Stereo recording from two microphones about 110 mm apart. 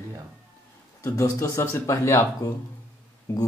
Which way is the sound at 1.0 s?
25° left (ahead or behind).